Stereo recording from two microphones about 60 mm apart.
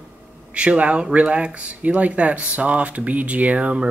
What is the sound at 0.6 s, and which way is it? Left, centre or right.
Speech, centre.